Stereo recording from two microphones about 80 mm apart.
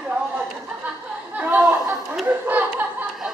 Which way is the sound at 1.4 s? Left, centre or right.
Right.